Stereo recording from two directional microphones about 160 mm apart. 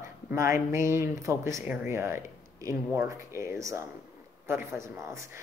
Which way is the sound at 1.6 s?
5° right (ahead or behind).